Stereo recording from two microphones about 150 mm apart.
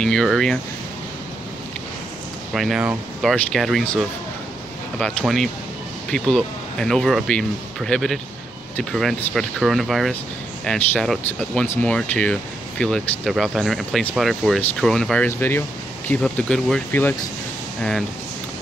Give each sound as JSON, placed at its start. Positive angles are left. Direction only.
{"t": 0.0, "sound": "speech", "side_deg": 5}
{"t": 2.5, "sound": "speech", "side_deg": 0}
{"t": 15.2, "sound": "speech", "side_deg": 15}